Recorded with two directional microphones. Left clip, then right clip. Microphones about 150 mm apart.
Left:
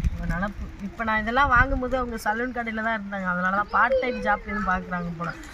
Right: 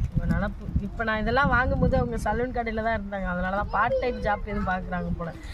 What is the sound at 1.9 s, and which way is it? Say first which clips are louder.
Speech: left 1 dB; 35° right (ahead or behind).